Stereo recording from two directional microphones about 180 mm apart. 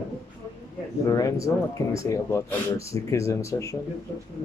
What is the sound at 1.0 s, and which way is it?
A man's voice, 20° left (ahead or behind).